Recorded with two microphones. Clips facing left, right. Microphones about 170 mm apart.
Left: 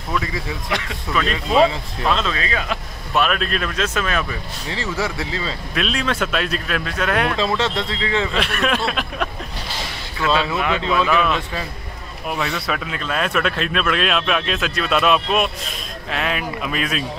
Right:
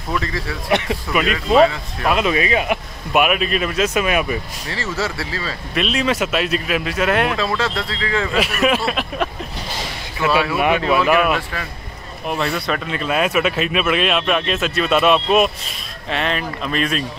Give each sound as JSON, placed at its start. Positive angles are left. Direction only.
{"t": 0.7, "sound": "speech", "side_deg": -25}
{"t": 1.2, "sound": "speech", "side_deg": 0}
{"t": 2.0, "sound": "speech", "side_deg": -15}
{"t": 4.6, "sound": "speech", "side_deg": 15}
{"t": 5.8, "sound": "speech", "side_deg": -5}
{"t": 7.3, "sound": "speech", "side_deg": 25}
{"t": 8.3, "sound": "speech", "side_deg": -5}
{"t": 10.2, "sound": "speech", "side_deg": -20}